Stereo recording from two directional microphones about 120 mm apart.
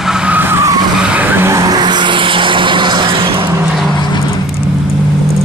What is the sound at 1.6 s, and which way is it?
Vehicle, 35° right (ahead or behind).